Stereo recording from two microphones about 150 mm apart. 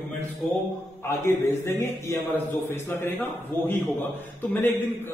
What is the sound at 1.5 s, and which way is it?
A man's voice, 20° left (ahead or behind).